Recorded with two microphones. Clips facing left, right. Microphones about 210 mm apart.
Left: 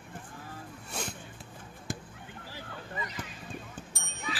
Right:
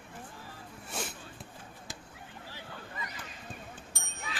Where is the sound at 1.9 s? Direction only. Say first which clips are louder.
Left 11 dB; 55° left (ahead or behind).